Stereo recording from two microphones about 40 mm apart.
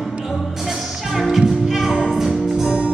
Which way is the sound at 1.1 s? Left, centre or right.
Centre.